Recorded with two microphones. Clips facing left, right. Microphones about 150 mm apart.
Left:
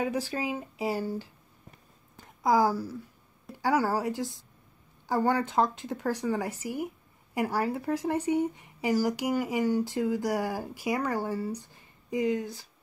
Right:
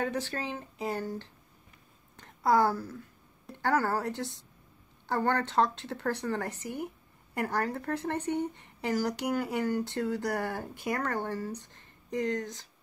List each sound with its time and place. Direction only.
0.0 s speech: 10° left (ahead or behind)